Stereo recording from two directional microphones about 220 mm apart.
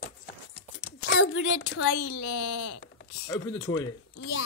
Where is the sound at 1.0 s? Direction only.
65° left (ahead or behind).